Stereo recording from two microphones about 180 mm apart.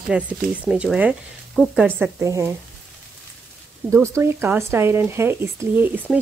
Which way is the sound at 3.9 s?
15° right (ahead or behind).